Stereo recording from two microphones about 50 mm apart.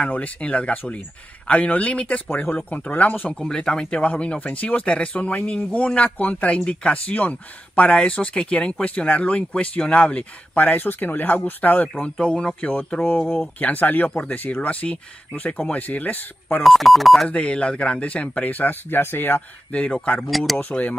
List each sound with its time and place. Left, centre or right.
0.0 s speech: left
3.3 s speech: centre
4.0 s speech: left
12.0 s speech: left
13.6 s speech: left
16.6 s speech: centre
17.3 s speech: left
18.5 s speech: left
19.7 s speech: left
20.2 s speech: centre
20.5 s speech: left